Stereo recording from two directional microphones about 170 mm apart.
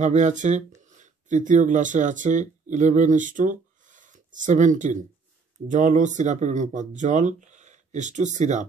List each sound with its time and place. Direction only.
0.0 s speech: 45° right (ahead or behind)